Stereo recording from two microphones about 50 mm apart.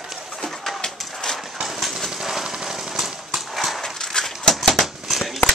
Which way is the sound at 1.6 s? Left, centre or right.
Centre.